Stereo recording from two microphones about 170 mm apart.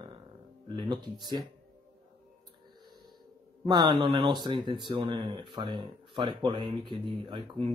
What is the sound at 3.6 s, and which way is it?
Speech, 25° right (ahead or behind).